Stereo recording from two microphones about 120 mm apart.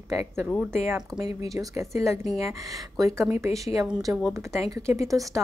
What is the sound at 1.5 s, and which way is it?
Speech, 25° right (ahead or behind).